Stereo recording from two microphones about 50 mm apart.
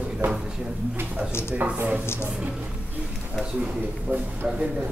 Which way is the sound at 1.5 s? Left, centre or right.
Right.